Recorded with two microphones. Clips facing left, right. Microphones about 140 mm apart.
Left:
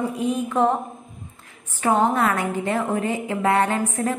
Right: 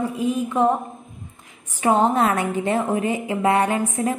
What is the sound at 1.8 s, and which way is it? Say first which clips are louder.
A woman's voice: right 2 dB; 20° right (ahead or behind).